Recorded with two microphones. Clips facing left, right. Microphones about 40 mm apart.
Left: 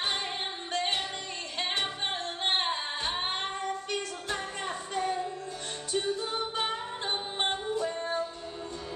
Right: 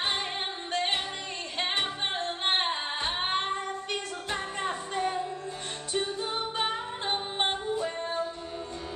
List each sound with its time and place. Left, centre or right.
0.7 s music: right